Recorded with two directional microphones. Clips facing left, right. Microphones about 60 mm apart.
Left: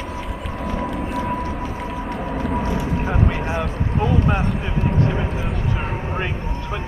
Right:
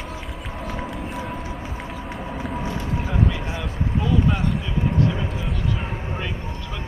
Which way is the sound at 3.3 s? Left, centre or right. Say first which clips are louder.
Left 6 dB; left.